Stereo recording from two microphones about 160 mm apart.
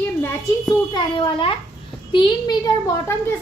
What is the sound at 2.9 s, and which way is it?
Speech, 15° left (ahead or behind).